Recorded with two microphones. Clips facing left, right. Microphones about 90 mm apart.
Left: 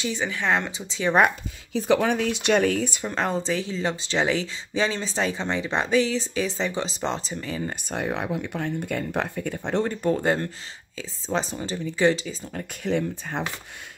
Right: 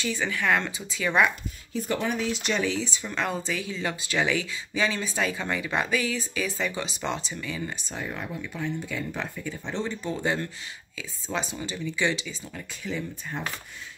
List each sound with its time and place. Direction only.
0.0 s speech: 20° left (ahead or behind)
1.7 s speech: 90° left; by 3.1 s 55° left (ahead or behind)
3.1 s speech: 35° left (ahead or behind)
7.9 s speech: 75° left (ahead or behind); by 12.6 s 40° left (ahead or behind)
12.8 s speech: 70° left (ahead or behind)